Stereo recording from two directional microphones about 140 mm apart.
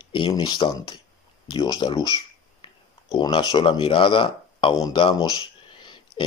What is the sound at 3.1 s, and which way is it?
Speech, 30° left (ahead or behind).